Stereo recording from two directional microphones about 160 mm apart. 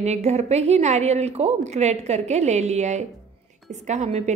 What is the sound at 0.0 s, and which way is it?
A woman's voice, 45° right (ahead or behind).